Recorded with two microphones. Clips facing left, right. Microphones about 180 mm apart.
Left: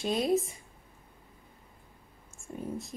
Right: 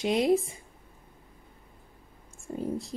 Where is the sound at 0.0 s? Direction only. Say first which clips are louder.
Right 4 dB; 20° right (ahead or behind).